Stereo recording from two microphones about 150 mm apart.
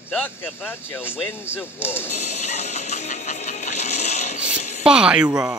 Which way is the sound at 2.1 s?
50° left (ahead or behind).